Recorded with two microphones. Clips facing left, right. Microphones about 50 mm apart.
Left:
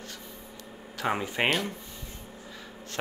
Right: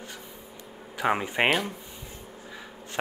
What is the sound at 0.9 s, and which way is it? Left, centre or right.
Speech, centre.